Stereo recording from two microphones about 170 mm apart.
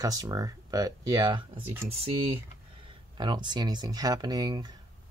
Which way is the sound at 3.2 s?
25° right (ahead or behind).